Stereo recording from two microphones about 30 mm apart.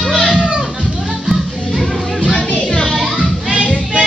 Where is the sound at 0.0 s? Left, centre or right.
Centre.